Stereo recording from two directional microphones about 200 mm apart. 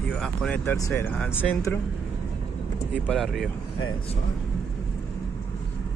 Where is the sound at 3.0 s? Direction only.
Centre (ahead or behind).